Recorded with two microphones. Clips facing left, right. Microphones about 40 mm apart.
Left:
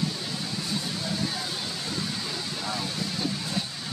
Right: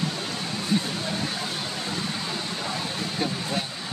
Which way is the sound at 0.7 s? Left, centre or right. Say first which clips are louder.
Right 7 dB; right.